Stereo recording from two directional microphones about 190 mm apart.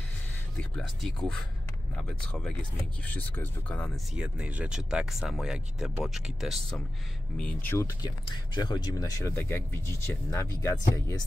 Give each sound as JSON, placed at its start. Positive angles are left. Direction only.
{"t": 0.6, "sound": "speech", "side_deg": 5}
{"t": 4.1, "sound": "speech", "side_deg": -5}
{"t": 8.0, "sound": "speech", "side_deg": 20}